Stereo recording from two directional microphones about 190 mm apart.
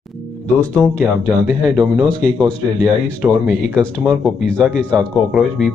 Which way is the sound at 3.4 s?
Centre (ahead or behind).